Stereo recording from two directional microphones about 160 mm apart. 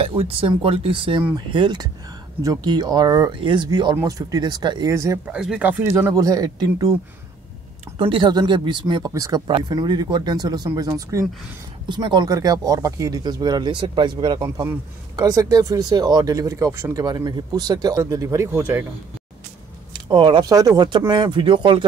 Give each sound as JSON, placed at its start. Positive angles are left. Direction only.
{"t": 0.0, "sound": "speech", "side_deg": -35}
{"t": 5.2, "sound": "speech", "side_deg": -5}
{"t": 8.0, "sound": "speech", "side_deg": -30}
{"t": 19.9, "sound": "speech", "side_deg": -30}